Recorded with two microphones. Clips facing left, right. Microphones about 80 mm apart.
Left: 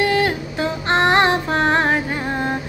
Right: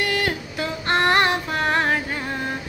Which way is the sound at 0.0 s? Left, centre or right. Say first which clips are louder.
Left 5 dB; left.